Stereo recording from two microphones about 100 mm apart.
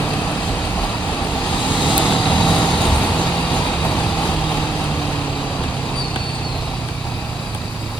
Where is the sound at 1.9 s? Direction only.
10° left (ahead or behind).